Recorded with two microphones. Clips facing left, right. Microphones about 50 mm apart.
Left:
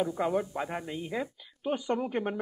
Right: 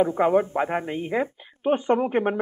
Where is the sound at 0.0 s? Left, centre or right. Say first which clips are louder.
Right 9 dB; right.